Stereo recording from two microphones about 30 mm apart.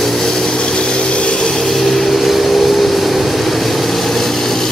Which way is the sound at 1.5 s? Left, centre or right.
Centre.